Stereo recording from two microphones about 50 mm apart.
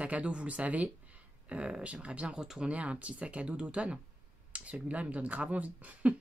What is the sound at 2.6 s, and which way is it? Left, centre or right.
Speech, right.